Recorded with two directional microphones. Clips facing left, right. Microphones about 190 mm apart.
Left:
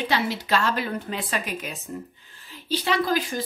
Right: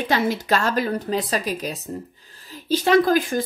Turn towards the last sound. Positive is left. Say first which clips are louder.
# right 7 dB
turn(degrees=-50)  # may be behind; listen again after turning